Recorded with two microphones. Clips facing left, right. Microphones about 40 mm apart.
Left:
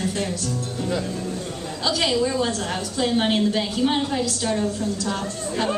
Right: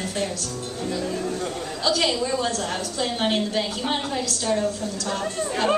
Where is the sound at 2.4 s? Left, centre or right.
Centre.